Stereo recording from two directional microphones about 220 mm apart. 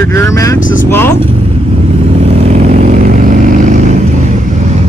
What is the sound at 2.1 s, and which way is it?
Vehicle, 30° right (ahead or behind).